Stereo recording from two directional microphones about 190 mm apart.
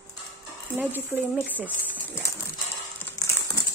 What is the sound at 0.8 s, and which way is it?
Speech, 10° right (ahead or behind).